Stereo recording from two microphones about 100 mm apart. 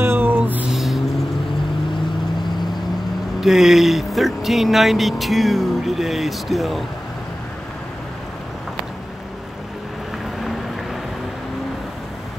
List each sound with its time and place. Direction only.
0.0 s a sound: 20° right (ahead or behind)
0.7 s vehicle: centre (ahead or behind)
3.3 s speech: 5° right (ahead or behind)